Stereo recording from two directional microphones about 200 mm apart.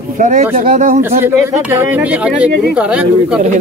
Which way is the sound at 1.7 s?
10° right (ahead or behind).